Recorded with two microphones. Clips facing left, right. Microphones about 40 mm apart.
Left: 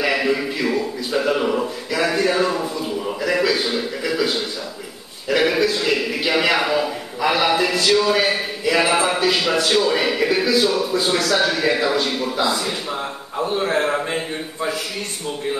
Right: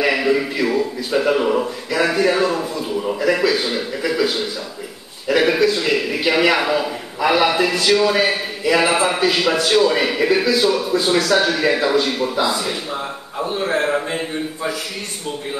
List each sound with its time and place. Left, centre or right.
0.0 s a man's voice: centre